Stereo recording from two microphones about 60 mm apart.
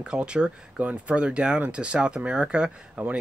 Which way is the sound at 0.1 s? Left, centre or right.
Centre.